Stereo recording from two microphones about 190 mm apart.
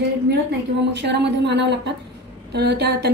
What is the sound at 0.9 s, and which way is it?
A woman's voice, 65° right (ahead or behind).